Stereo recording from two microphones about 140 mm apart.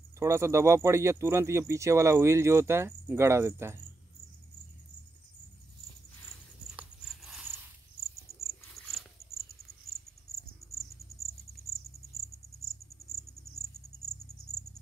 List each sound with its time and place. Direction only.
0.2 s speech: 20° right (ahead or behind)
6.7 s a sound: 5° right (ahead or behind)
8.5 s cricket: centre (ahead or behind)